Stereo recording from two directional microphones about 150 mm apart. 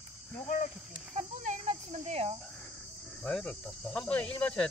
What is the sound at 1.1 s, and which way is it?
Cricket, 50° right (ahead or behind).